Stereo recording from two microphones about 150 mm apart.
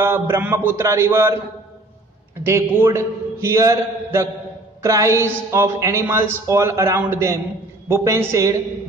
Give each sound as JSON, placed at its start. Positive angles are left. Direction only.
{"t": 0.0, "sound": "a man's voice", "side_deg": -15}
{"t": 2.4, "sound": "a man's voice", "side_deg": -15}